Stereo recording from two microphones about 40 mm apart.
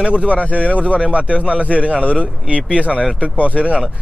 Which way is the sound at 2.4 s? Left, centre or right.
Right.